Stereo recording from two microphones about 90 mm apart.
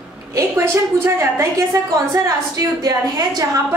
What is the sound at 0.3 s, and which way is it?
A woman's voice, 35° right (ahead or behind).